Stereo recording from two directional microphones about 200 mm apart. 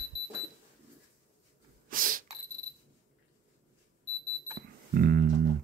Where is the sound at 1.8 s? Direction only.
45° right (ahead or behind).